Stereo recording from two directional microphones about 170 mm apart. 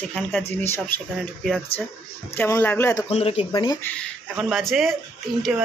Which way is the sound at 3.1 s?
35° left (ahead or behind).